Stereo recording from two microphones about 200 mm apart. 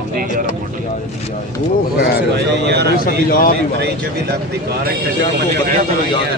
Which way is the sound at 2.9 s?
45° left (ahead or behind).